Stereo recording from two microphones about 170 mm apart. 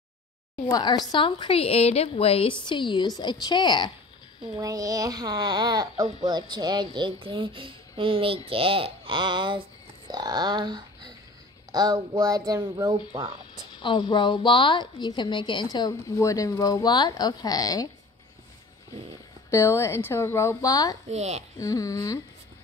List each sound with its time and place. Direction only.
0.7 s a woman's voice: 25° left (ahead or behind)
4.6 s speech: 20° right (ahead or behind)
13.7 s a woman's voice: 30° left (ahead or behind)
19.5 s speech: 15° left (ahead or behind)
21.1 s speech: 40° right (ahead or behind)
21.5 s a woman's voice: 20° left (ahead or behind)